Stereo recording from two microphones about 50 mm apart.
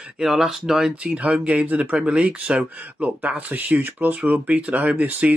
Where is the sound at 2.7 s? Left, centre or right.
Right.